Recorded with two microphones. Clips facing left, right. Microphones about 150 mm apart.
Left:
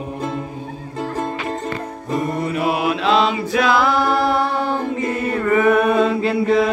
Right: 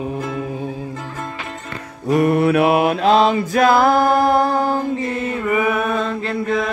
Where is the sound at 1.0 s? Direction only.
40° left (ahead or behind).